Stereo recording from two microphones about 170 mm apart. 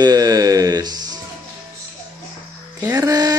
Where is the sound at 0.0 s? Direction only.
20° right (ahead or behind).